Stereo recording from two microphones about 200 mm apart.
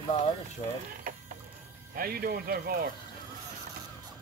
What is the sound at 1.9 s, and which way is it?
Speech, 45° right (ahead or behind).